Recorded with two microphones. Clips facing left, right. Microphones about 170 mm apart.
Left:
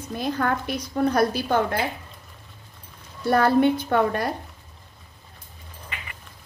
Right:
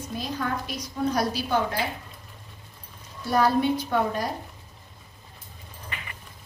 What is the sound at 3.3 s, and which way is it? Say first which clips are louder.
Speech: left 3 dB; 60° left (ahead or behind).